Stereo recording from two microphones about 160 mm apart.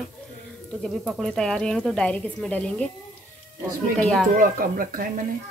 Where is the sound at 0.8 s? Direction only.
Centre (ahead or behind).